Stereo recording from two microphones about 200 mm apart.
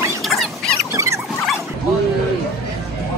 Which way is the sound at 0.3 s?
Centre (ahead or behind).